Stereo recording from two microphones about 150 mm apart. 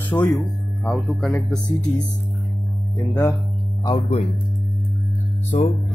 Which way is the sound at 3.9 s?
40° left (ahead or behind).